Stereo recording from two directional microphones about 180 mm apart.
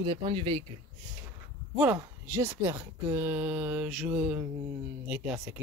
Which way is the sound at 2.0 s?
10° right (ahead or behind).